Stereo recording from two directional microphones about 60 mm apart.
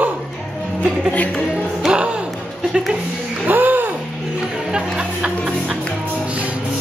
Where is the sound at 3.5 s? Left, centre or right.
Right.